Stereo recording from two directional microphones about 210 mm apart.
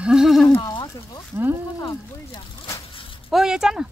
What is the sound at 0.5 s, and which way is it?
Speech, 15° left (ahead or behind).